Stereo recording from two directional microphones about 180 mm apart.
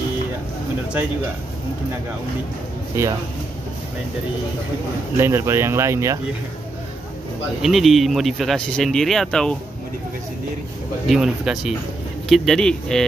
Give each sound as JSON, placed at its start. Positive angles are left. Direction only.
{"t": 2.9, "sound": "speech", "side_deg": -15}
{"t": 5.1, "sound": "speech", "side_deg": -15}
{"t": 7.6, "sound": "speech", "side_deg": 0}
{"t": 11.1, "sound": "speech", "side_deg": -5}